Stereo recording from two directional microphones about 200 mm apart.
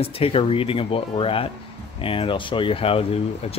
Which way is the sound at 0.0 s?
30° left (ahead or behind).